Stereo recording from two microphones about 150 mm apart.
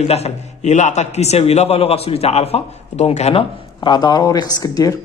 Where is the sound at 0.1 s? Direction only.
45° left (ahead or behind).